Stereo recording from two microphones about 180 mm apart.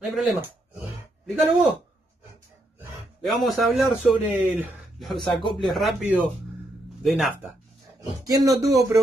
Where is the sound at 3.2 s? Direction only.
Centre (ahead or behind).